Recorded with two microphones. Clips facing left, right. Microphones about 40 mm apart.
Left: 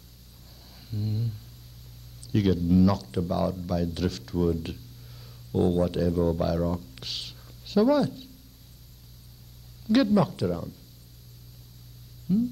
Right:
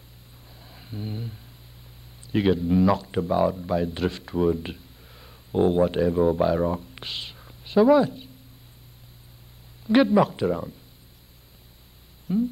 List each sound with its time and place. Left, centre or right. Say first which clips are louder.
0.7 s a sound: even; right
2.2 s speech: right 2 dB; right
9.8 s speech: right 3 dB; right
12.3 s speech: right 1 dB; right